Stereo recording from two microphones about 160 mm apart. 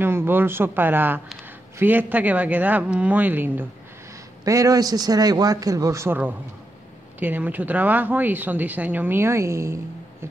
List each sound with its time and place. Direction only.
0.0 s a man's voice: 15° right (ahead or behind)